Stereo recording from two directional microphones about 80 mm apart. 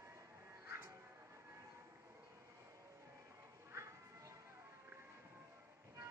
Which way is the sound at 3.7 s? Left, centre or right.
Right.